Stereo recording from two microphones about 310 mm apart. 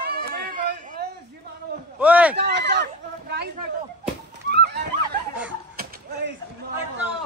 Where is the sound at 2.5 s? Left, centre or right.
Right.